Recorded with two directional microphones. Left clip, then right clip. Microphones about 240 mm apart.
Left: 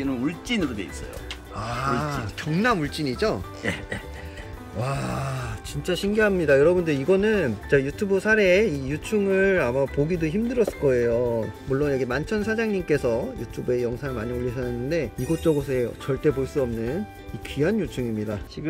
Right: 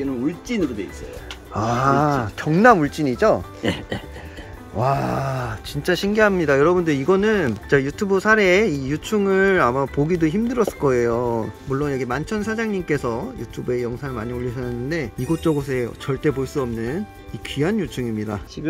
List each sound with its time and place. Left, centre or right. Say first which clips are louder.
0.0 s speech: right 3 dB; centre
1.5 s speech: right 8 dB; right; by 3.3 s centre
3.6 s speech: right 4 dB; right
4.7 s speech: right 9 dB; centre
15.1 s speech: right 3 dB; centre
15.7 s speech: right 1 dB; centre